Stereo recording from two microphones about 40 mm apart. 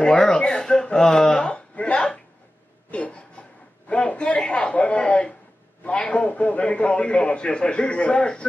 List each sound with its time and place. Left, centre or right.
0.2 s speech: centre
2.9 s a sound: left
3.9 s a man's voice: left